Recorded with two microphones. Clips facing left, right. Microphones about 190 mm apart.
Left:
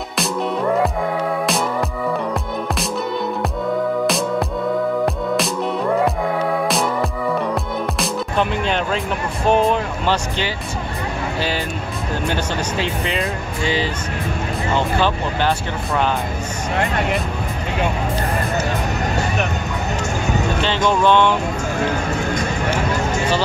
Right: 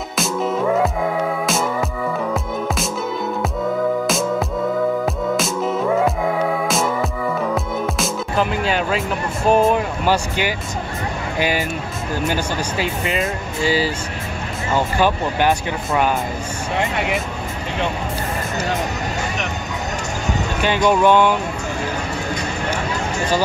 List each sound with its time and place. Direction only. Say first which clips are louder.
0.2 s music: right 1 dB; centre (ahead or behind)
5.0 s music: left 1 dB; centre (ahead or behind)
9.5 s speech: right 1 dB; 5° right (ahead or behind)
20.6 s speech: right 3 dB; 10° right (ahead or behind)